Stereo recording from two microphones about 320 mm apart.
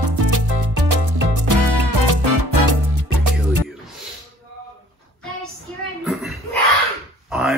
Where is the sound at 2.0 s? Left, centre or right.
Right.